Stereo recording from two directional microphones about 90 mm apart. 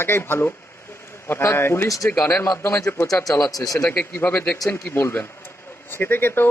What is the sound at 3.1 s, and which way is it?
Speech, 40° left (ahead or behind).